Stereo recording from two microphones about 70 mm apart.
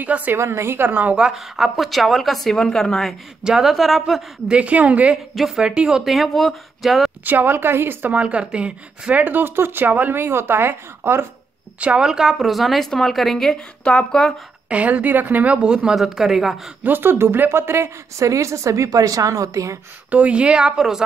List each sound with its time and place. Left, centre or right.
0.0 s speech: right
0.4 s a woman's voice: right
1.1 s a woman's voice: centre
3.4 s a woman's voice: centre
4.5 s speech: centre
5.1 s a woman's voice: centre
7.2 s speech: right
8.1 s speech: centre; by 11.2 s right
11.8 s a woman's voice: centre
14.7 s a woman's voice: right; by 16.5 s centre
16.8 s a woman's voice: right
20.1 s speech: centre